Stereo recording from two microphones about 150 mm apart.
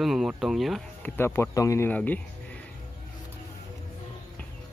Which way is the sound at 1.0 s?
15° left (ahead or behind).